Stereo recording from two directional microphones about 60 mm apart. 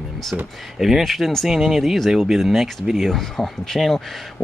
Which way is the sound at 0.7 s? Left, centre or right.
Centre.